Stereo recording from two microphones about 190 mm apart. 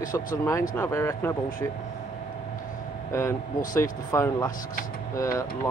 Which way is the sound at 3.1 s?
15° left (ahead or behind).